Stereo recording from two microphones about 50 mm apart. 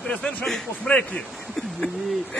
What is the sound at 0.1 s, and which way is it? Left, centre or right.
A man's voice, left.